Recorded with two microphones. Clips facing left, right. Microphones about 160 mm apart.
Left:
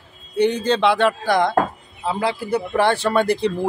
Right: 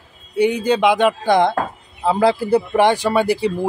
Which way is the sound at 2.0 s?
40° right (ahead or behind).